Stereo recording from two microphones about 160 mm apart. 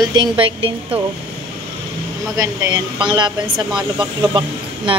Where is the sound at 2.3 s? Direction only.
20° right (ahead or behind).